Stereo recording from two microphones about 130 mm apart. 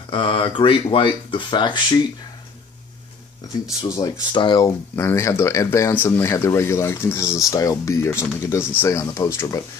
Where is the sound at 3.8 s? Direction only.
30° left (ahead or behind).